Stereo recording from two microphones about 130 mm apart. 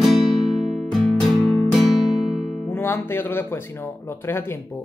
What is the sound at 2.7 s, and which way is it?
Speech, 15° left (ahead or behind).